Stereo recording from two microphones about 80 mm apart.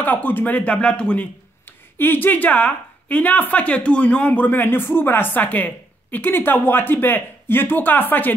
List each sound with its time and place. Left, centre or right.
0.0 s a woman's voice: left
2.0 s a woman's voice: left